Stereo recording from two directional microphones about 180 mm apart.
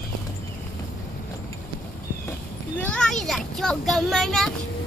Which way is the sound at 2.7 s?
5° left (ahead or behind).